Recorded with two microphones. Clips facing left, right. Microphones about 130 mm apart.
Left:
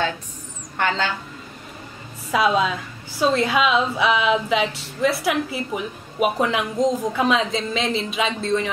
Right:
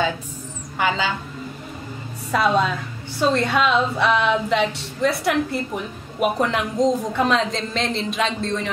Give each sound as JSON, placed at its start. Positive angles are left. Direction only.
{"t": 0.7, "sound": "a woman's voice", "side_deg": -5}
{"t": 2.3, "sound": "a woman's voice", "side_deg": 5}